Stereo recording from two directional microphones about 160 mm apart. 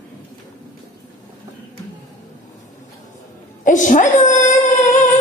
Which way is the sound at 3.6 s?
55° left (ahead or behind).